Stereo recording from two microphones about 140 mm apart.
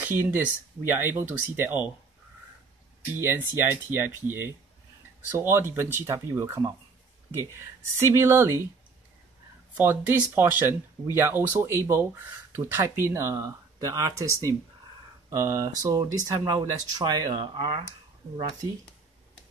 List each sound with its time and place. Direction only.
0.0 s speech: 15° right (ahead or behind)
3.2 s speech: 15° right (ahead or behind)
8.0 s speech: 20° right (ahead or behind)
9.8 s speech: 15° right (ahead or behind); by 17.8 s 30° right (ahead or behind)